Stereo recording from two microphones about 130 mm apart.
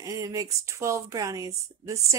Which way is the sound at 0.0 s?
25° right (ahead or behind).